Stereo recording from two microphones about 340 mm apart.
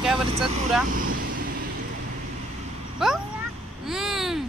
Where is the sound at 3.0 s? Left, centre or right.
Centre.